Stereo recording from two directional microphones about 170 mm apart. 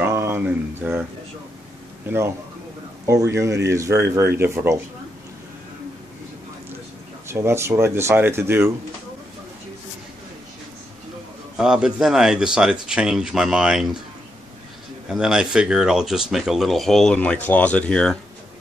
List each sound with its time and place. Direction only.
0.1 s speech: 15° right (ahead or behind)
2.0 s speech: 15° right (ahead or behind)
7.2 s speech: 15° right (ahead or behind)
11.5 s speech: 5° right (ahead or behind)
15.0 s speech: 5° right (ahead or behind)